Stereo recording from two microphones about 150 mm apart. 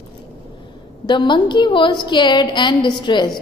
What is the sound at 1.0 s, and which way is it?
A woman's voice, 30° left (ahead or behind).